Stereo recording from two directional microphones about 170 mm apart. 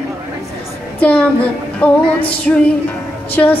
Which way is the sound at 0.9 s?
10° left (ahead or behind).